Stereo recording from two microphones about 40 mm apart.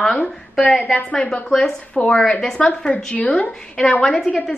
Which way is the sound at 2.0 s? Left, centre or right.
Centre.